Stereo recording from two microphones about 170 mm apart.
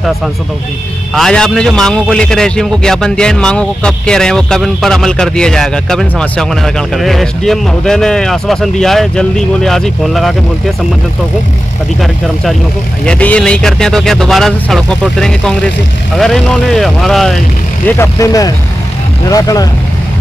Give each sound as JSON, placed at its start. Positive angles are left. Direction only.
{"t": 1.1, "sound": "a man's voice", "side_deg": 5}
{"t": 13.0, "sound": "a man's voice", "side_deg": 5}
{"t": 17.8, "sound": "speech", "side_deg": 15}